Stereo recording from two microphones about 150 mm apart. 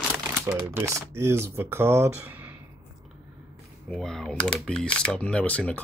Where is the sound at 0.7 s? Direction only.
15° right (ahead or behind).